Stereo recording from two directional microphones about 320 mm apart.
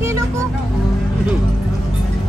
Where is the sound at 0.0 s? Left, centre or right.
Centre.